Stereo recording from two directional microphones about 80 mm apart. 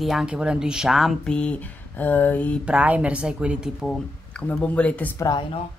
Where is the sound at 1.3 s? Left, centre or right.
Centre.